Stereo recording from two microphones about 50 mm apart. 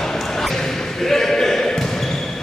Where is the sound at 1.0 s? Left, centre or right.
Centre.